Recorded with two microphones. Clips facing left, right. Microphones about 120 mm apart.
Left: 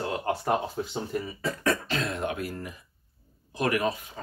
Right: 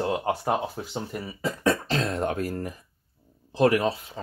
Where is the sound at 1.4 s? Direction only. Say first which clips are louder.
Right 4 dB; 15° right (ahead or behind).